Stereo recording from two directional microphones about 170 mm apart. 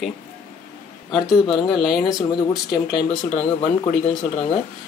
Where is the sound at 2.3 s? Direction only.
25° left (ahead or behind).